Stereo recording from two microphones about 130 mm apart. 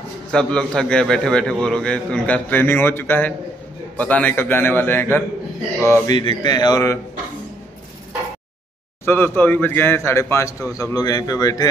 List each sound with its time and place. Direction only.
0.3 s a man's voice: 5° left (ahead or behind); by 6.1 s 20° left (ahead or behind)
6.1 s speech: 35° left (ahead or behind)
9.0 s a man's voice: 15° left (ahead or behind)